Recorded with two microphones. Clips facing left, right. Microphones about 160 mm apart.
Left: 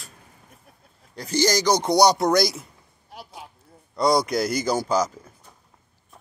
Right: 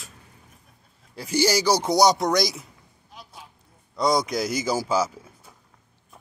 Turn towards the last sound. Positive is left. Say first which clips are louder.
# left 1 dB
turn(degrees=-5)  # may be behind; listen again after turning